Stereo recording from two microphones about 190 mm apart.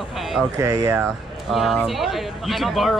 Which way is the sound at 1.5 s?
Centre (ahead or behind).